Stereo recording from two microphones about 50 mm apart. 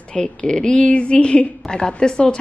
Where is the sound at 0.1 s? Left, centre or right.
Centre.